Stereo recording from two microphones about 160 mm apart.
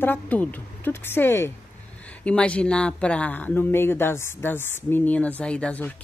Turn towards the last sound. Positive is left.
turn(degrees=10)  # may be behind; listen again after turning